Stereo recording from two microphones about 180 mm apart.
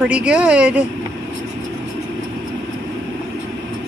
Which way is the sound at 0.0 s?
5° right (ahead or behind).